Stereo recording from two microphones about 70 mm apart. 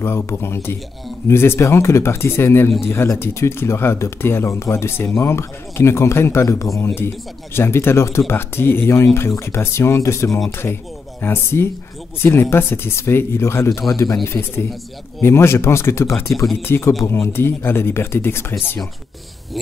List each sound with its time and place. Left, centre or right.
0.0 s speech: left
6.4 s speech: left